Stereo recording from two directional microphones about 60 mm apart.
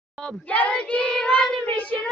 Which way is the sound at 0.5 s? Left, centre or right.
Left.